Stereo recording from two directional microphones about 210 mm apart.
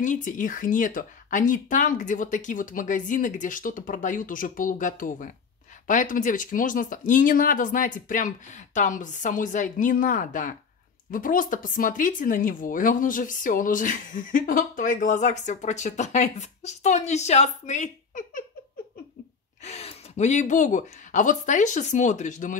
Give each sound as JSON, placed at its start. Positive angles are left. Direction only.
{"t": 0.0, "sound": "speech", "side_deg": 40}
{"t": 19.6, "sound": "speech", "side_deg": 30}